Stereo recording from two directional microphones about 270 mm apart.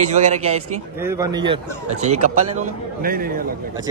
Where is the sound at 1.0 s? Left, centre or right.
Centre; by 3.3 s right.